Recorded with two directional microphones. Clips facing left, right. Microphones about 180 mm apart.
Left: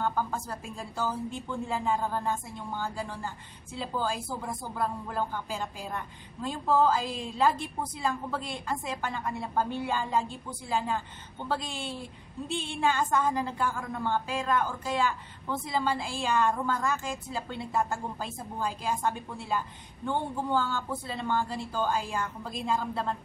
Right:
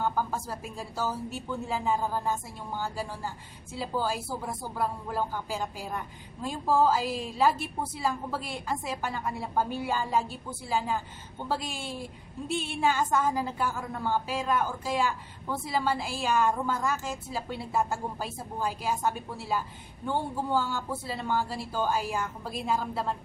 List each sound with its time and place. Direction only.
0.0 s a woman's voice: 10° right (ahead or behind)